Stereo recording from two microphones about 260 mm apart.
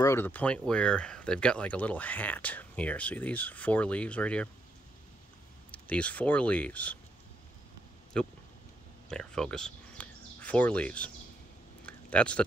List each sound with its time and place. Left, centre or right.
0.0 s speech: centre
5.7 s speech: centre
8.2 s speech: centre
11.8 s a sound: centre